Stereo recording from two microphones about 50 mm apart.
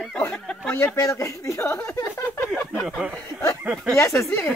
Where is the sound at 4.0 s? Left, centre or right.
Left.